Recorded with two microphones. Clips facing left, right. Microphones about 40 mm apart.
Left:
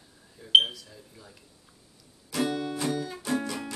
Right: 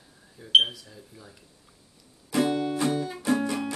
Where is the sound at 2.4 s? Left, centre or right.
Centre.